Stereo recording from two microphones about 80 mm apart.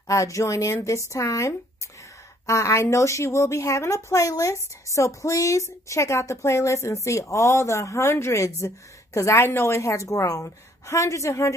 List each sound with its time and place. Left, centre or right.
0.1 s a woman's voice: left